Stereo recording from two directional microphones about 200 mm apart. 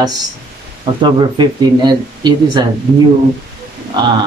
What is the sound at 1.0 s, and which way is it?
Speech, 20° right (ahead or behind).